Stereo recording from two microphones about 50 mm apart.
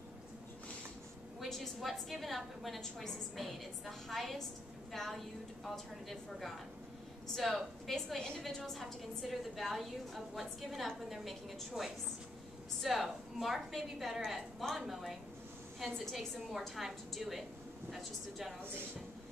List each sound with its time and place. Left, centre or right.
1.4 s a woman's voice: centre
18.6 s speech: right